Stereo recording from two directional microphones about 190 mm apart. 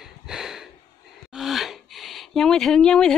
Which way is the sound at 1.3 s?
Centre (ahead or behind).